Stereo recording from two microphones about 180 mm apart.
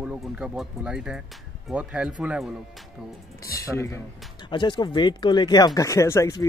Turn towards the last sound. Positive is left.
turn(degrees=20)  # may be behind; listen again after turning